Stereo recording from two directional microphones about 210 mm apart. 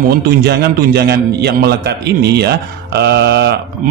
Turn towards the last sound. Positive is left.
turn(degrees=-50)  # may be behind; listen again after turning